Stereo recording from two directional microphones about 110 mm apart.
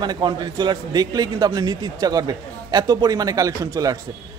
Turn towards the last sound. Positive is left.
turn(degrees=-35)  # may be behind; listen again after turning